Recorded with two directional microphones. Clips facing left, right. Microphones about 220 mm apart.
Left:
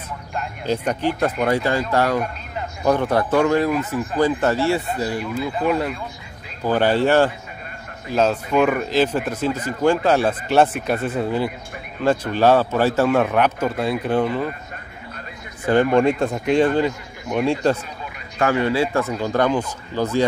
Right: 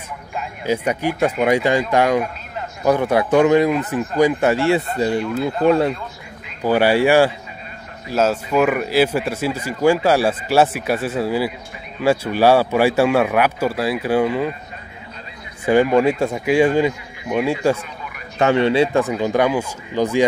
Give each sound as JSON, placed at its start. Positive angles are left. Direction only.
{"t": 0.3, "sound": "a man's voice", "side_deg": -5}
{"t": 2.5, "sound": "a man's voice", "side_deg": -5}
{"t": 4.8, "sound": "speech", "side_deg": 0}
{"t": 6.6, "sound": "a man's voice", "side_deg": -10}
{"t": 15.6, "sound": "a man's voice", "side_deg": -10}
{"t": 18.4, "sound": "a man's voice", "side_deg": -25}